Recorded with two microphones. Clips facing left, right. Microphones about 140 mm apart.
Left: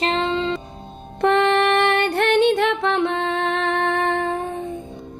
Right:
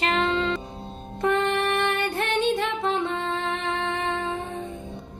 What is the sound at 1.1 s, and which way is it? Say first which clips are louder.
Music: left 6 dB; 75° left (ahead or behind).